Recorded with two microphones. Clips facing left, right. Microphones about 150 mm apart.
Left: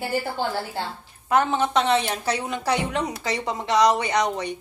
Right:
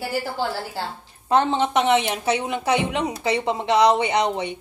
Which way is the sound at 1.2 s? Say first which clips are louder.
Right 2 dB; 30° right (ahead or behind).